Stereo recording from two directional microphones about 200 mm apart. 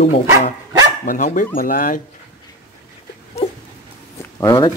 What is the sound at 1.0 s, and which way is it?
Dishes, 40° left (ahead or behind).